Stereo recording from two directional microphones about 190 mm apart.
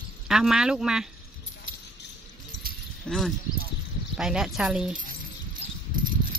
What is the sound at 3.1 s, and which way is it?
Speech, 5° left (ahead or behind).